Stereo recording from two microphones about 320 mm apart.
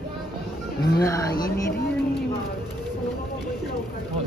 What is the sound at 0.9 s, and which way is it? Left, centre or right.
Speech, centre.